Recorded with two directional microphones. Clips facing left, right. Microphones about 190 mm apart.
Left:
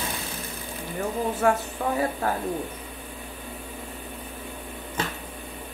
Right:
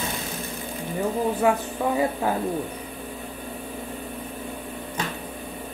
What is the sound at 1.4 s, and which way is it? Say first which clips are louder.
Speech: even; 15° right (ahead or behind).